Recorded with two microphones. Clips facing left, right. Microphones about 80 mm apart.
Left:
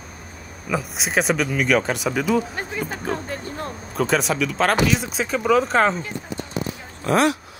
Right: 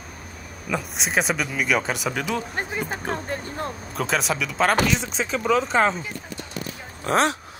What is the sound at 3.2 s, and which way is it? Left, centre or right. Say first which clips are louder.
Speech: even; right.